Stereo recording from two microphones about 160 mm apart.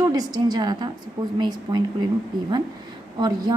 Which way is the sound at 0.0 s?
25° right (ahead or behind).